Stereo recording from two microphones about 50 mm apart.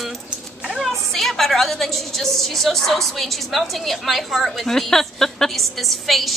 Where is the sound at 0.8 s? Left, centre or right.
Centre.